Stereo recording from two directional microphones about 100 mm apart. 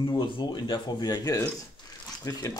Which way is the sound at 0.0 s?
55° left (ahead or behind).